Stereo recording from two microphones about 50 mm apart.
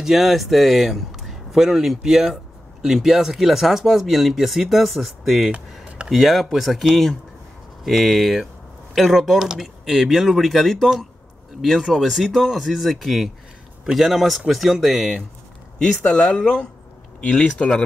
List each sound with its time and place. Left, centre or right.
0.0 s speech: centre
15.9 s speech: centre